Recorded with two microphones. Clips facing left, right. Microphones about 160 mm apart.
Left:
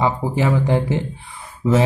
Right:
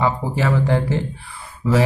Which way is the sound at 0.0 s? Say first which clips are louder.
Left 1 dB; 15° left (ahead or behind).